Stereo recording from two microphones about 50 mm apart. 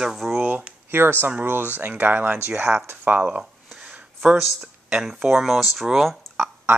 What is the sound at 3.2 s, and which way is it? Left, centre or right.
Speech, right.